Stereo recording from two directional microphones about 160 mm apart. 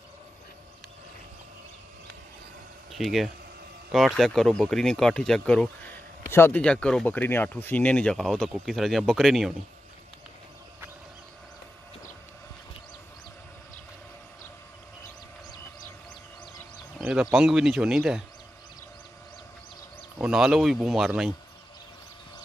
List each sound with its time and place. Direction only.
2.9 s speech: centre (ahead or behind)
17.0 s speech: 5° right (ahead or behind)
20.2 s speech: 5° right (ahead or behind)